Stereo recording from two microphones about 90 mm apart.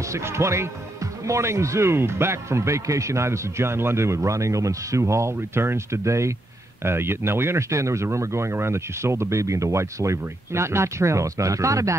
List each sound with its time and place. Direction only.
0.1 s speech: 30° right (ahead or behind)